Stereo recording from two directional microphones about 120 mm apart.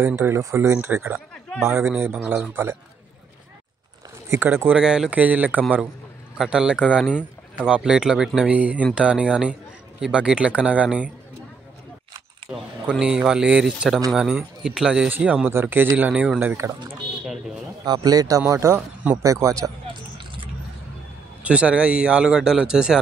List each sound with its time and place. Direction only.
0.0 s speech: 20° right (ahead or behind)
4.3 s speech: 20° right (ahead or behind)
4.7 s speech: 5° right (ahead or behind)
12.5 s speech: 10° right (ahead or behind)
15.0 s speech: 15° right (ahead or behind)
17.8 s a man's voice: 35° right (ahead or behind)
19.9 s vehicle: 45° right (ahead or behind)
21.4 s speech: 10° right (ahead or behind)